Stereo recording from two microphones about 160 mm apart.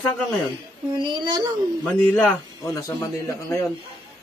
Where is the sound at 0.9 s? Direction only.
30° right (ahead or behind).